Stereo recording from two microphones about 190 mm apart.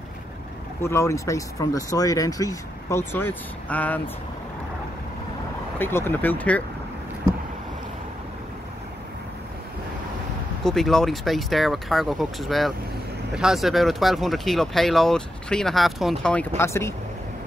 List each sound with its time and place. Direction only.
0.8 s speech: 15° left (ahead or behind)
5.8 s speech: 10° left (ahead or behind)
10.6 s speech: centre (ahead or behind)